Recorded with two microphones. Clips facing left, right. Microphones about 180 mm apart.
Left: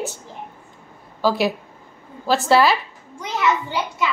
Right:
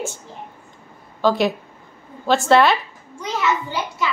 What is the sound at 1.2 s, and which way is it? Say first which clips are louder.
A woman's voice: right 2 dB; 5° left (ahead or behind).